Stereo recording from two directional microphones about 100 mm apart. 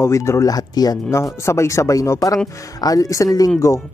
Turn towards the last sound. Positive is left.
turn(degrees=35)  # may be behind; listen again after turning